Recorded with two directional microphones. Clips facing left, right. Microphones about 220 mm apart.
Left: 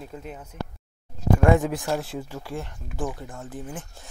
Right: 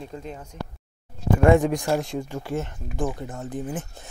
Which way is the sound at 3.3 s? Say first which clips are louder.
Right 5 dB; 20° right (ahead or behind).